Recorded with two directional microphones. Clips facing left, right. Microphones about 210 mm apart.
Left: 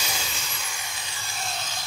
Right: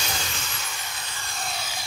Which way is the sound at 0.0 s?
5° left (ahead or behind).